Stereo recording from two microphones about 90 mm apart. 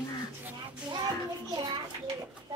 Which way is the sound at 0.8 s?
50° right (ahead or behind).